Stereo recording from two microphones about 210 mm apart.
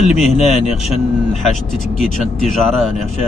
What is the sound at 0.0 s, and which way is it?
Speech, 30° left (ahead or behind).